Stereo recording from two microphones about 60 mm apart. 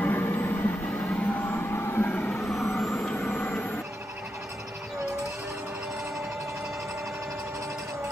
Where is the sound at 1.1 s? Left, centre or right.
Left.